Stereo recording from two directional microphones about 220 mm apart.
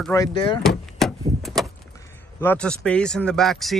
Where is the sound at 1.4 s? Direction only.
Centre (ahead or behind).